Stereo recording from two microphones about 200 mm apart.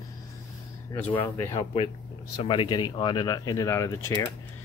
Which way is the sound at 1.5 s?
30° left (ahead or behind).